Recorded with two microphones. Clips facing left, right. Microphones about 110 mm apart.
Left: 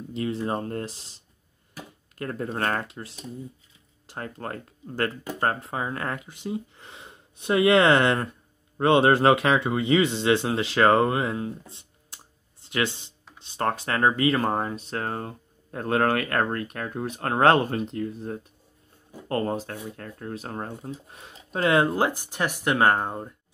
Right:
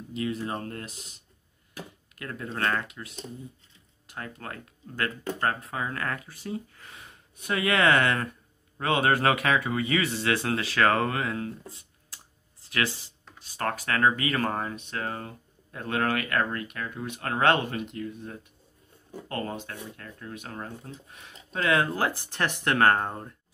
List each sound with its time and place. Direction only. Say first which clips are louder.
0.1 s speech: left 3 dB; 30° left (ahead or behind); by 23.3 s 15° left (ahead or behind)